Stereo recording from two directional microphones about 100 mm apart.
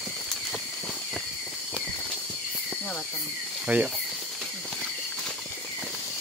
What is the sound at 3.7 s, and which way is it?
Speech, 15° right (ahead or behind).